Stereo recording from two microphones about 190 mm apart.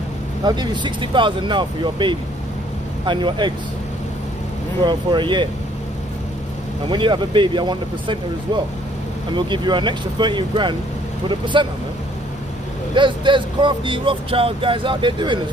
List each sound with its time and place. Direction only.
0.4 s speech: 20° right (ahead or behind)
4.8 s speech: 25° right (ahead or behind)
6.9 s speech: 25° right (ahead or behind)
9.3 s speech: 25° right (ahead or behind)
12.9 s speech: 25° right (ahead or behind)